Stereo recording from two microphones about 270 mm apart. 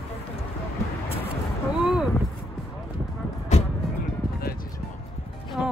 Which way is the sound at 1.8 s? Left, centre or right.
Centre.